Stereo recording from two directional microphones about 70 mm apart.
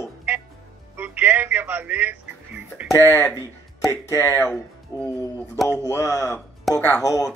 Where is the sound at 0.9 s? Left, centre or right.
Right.